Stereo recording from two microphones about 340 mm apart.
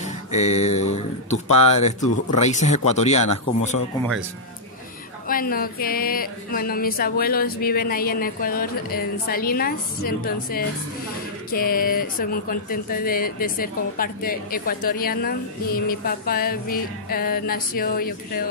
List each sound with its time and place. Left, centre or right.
0.0 s a sound: centre
2.3 s speech: centre
5.3 s speech: left